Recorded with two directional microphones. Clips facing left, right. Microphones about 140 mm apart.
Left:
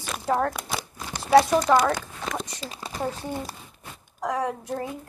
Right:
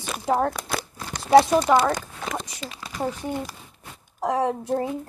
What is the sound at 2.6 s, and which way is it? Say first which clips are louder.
Speech: even; 35° left (ahead or behind).